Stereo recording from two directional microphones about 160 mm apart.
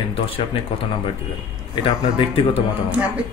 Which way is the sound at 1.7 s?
35° left (ahead or behind).